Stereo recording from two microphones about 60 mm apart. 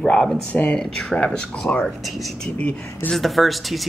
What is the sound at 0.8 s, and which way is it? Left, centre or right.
Speech, centre.